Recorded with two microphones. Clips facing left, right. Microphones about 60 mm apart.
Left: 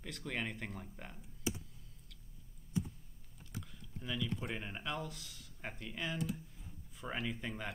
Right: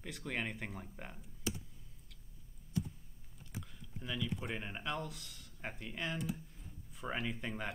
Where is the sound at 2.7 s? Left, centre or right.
Centre.